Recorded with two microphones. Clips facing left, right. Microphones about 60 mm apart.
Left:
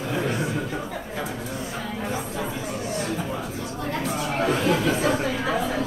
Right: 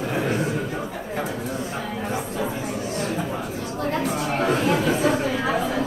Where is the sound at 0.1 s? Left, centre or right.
Right.